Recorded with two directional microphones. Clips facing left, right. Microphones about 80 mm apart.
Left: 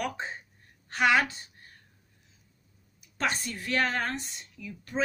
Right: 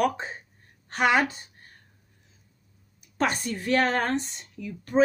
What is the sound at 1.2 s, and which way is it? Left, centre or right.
Speech, right.